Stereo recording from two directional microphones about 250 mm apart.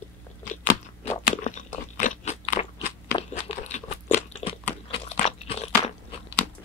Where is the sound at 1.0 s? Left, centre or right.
Left.